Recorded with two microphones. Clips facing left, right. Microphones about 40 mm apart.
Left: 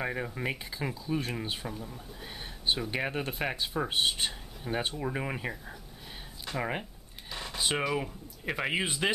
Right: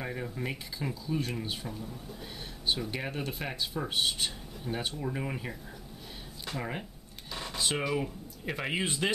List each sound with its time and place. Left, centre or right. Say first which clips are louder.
0.0 s speech: left 3 dB; left
6.6 s speech: left 5 dB; left
7.2 s speech: left 1 dB; centre